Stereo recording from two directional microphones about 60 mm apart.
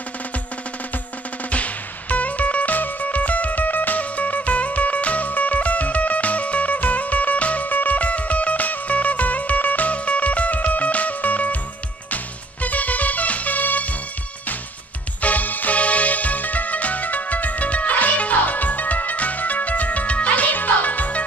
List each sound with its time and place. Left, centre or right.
1.5 s music: left
12.6 s music: left
15.2 s music: left